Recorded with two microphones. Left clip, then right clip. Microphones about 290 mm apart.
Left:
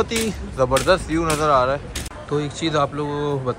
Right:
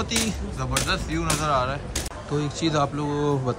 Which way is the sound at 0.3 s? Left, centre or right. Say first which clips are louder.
Left 10 dB; centre.